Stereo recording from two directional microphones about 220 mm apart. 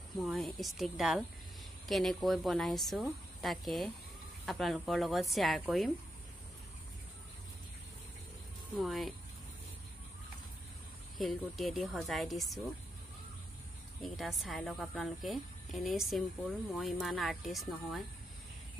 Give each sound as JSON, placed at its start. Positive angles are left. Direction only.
{"t": 0.1, "sound": "a woman's voice", "side_deg": 0}
{"t": 8.7, "sound": "a woman's voice", "side_deg": 0}
{"t": 11.1, "sound": "a woman's voice", "side_deg": 0}
{"t": 14.0, "sound": "a woman's voice", "side_deg": 0}